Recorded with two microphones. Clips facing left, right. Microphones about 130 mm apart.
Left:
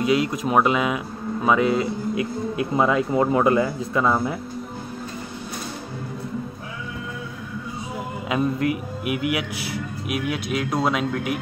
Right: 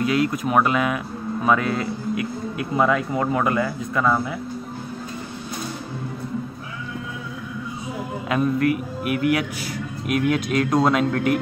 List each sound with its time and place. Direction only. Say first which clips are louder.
0.0 s speech: even; 20° left (ahead or behind)
8.3 s a man's voice: right 2 dB; 20° left (ahead or behind)